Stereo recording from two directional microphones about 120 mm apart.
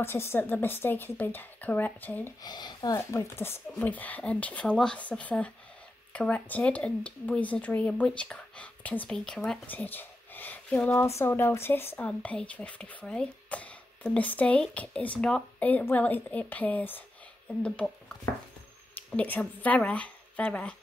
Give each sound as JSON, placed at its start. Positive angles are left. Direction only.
{"t": 0.0, "sound": "speech", "side_deg": 20}
{"t": 2.4, "sound": "speech", "side_deg": 35}
{"t": 3.0, "sound": "speech", "side_deg": 20}
{"t": 11.1, "sound": "speech", "side_deg": 20}